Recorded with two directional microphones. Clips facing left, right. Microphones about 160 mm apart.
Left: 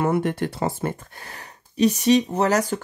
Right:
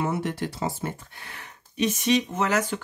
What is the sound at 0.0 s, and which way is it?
Speech, 55° left (ahead or behind).